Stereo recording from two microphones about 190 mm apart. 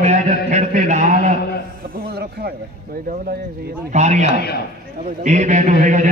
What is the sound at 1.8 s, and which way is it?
Speech, 50° right (ahead or behind).